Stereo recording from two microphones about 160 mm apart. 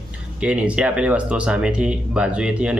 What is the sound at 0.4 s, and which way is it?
Speech, 5° right (ahead or behind).